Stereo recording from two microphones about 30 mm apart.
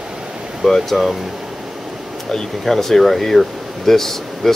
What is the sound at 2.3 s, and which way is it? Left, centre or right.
Speech, left.